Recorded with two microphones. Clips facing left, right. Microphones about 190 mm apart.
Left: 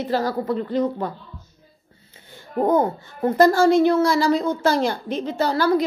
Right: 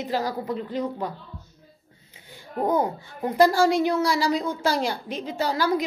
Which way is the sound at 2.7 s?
10° right (ahead or behind).